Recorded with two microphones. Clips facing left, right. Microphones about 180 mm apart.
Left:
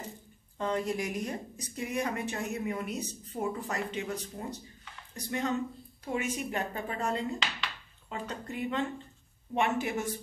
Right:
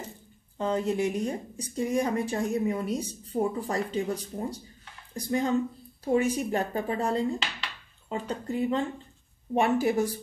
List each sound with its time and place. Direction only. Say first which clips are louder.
0.6 s speech: right 5 dB; 30° right (ahead or behind)